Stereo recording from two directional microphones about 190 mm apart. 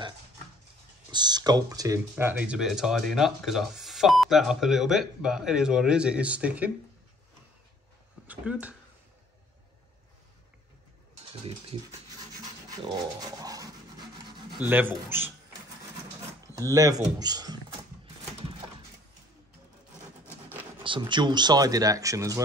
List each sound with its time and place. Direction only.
1.1 s speech: 20° right (ahead or behind)
8.3 s speech: 10° right (ahead or behind)
12.4 s a sound: 20° right (ahead or behind)
14.6 s speech: 10° right (ahead or behind)
16.5 s speech: 20° right (ahead or behind)
20.8 s speech: 25° right (ahead or behind)